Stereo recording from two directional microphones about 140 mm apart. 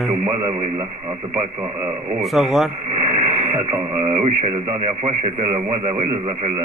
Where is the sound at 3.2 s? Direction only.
55° right (ahead or behind).